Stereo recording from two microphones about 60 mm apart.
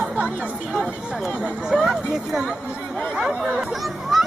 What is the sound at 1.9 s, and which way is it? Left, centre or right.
Speech, centre.